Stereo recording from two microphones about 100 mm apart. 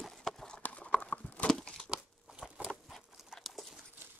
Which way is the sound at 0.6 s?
15° left (ahead or behind).